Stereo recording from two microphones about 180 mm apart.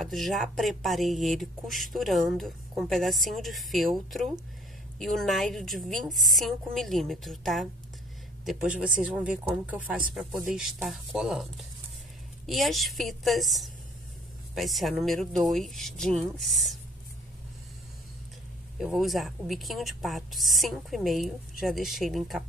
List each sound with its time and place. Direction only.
0.0 s speech: centre (ahead or behind)
8.8 s speech: 5° right (ahead or behind)
18.8 s speech: centre (ahead or behind)